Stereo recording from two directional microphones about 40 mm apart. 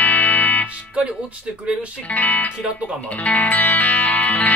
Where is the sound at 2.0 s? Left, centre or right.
Left.